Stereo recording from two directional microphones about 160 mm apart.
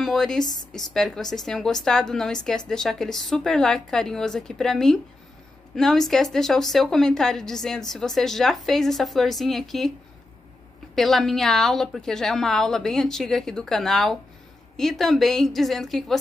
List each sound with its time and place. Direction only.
0.0 s a woman's voice: centre (ahead or behind)
11.0 s a woman's voice: centre (ahead or behind)